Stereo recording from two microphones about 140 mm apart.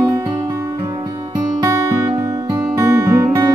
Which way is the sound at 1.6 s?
25° right (ahead or behind).